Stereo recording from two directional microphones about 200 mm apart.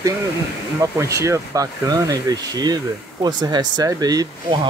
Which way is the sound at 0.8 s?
15° right (ahead or behind).